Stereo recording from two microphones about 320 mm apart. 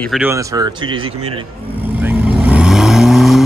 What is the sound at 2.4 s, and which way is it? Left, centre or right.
Vehicle, centre.